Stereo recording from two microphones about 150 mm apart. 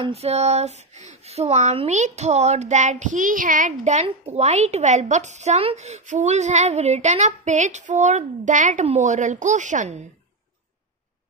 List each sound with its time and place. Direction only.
0.0 s a woman's voice: 45° right (ahead or behind)